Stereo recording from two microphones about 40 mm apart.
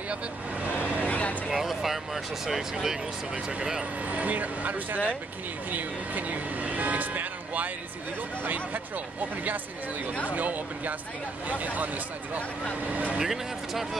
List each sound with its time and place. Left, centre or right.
0.1 s speech: right
1.0 s a sound: left
1.5 s speech: centre
4.1 s speech: right
13.2 s speech: centre